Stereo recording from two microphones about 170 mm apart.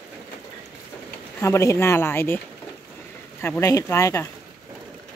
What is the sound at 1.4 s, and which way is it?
Speech, 15° left (ahead or behind).